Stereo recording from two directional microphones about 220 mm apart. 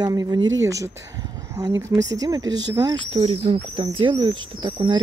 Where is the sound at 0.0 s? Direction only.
15° right (ahead or behind).